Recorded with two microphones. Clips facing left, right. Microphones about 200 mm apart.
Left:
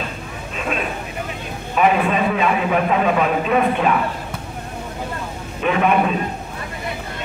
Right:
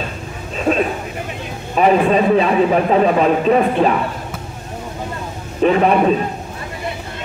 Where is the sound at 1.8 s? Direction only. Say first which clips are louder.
Right 4 dB; 35° right (ahead or behind).